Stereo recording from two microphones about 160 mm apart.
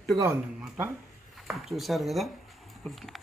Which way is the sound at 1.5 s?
Centre (ahead or behind).